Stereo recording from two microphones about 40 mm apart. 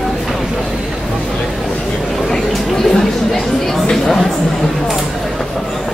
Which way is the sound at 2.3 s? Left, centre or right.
Centre.